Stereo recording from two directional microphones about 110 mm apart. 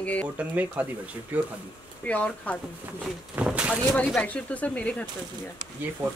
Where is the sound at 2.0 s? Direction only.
15° left (ahead or behind).